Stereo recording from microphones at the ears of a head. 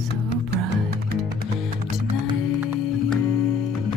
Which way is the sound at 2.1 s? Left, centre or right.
Left.